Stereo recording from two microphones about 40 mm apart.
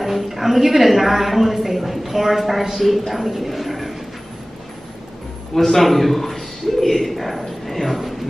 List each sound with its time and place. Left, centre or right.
0.0 s a woman's voice: centre
5.5 s a man's voice: centre